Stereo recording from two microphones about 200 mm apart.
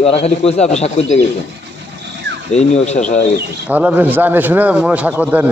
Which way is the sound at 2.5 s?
35° left (ahead or behind).